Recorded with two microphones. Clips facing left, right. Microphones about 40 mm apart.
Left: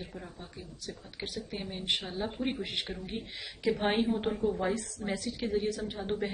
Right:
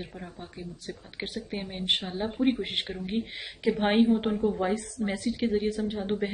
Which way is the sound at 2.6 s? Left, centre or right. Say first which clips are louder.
Right 4 dB; right.